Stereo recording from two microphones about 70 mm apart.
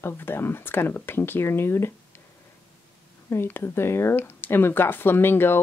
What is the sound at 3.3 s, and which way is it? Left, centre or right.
Speech, left.